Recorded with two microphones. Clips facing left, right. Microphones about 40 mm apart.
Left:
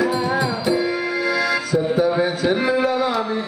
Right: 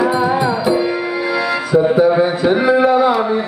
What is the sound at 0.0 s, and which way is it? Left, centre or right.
Music, centre.